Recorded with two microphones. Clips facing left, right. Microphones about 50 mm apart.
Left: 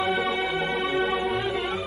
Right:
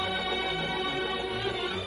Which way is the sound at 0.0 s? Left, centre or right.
Left.